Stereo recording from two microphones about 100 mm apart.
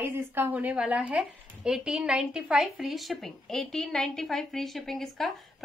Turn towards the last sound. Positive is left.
turn(degrees=5)  # may be behind; listen again after turning